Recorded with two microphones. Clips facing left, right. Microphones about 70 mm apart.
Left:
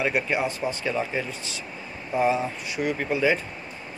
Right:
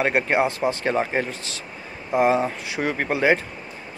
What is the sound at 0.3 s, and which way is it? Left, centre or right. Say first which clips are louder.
Speech: right 5 dB; right.